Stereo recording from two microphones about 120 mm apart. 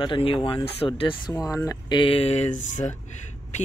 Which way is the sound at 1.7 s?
40° left (ahead or behind).